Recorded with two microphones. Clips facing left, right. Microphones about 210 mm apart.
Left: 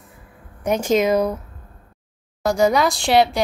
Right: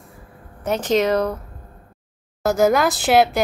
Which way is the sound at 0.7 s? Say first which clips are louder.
Left 1 dB; 10° left (ahead or behind).